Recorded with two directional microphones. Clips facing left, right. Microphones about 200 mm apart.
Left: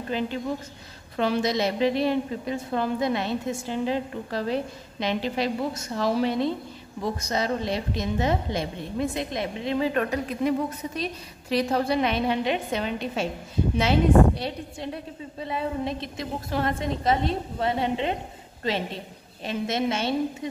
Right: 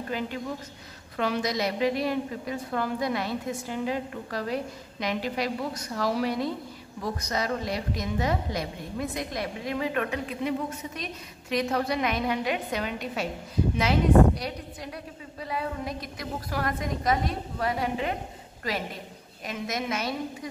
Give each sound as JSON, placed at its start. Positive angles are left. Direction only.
{"t": 1.1, "sound": "a woman's voice", "side_deg": 30}